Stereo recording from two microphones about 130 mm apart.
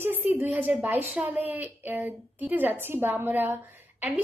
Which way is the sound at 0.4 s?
15° right (ahead or behind).